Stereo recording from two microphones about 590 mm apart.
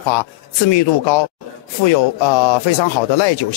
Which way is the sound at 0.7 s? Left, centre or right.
Left.